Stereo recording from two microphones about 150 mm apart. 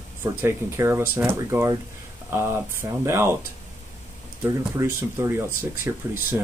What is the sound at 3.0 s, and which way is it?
Speech, 15° right (ahead or behind).